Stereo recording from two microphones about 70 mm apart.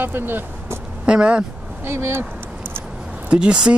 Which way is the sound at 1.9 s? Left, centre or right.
Right.